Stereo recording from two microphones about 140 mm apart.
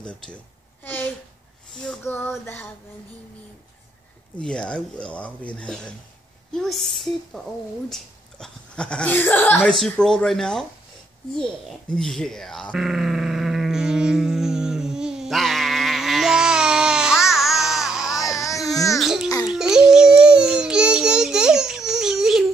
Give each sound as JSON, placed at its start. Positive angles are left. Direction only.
{"t": 1.7, "sound": "female singing", "side_deg": 5}
{"t": 2.0, "sound": "speech", "side_deg": 15}
{"t": 4.4, "sound": "speech", "side_deg": 5}
{"t": 12.0, "sound": "groan", "side_deg": 5}
{"t": 18.2, "sound": "baby cry", "side_deg": 25}
{"t": 18.9, "sound": "music", "side_deg": 0}
{"t": 19.2, "sound": "music", "side_deg": 25}
{"t": 19.5, "sound": "babbling", "side_deg": -5}